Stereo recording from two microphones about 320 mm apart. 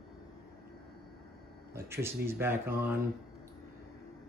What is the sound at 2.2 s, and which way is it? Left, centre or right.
Speech, centre.